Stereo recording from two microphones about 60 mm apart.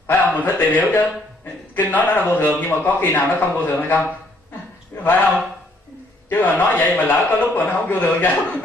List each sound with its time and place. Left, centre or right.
0.2 s a man's voice: left